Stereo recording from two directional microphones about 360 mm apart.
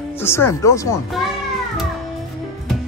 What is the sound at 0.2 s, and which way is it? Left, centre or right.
Speech, centre.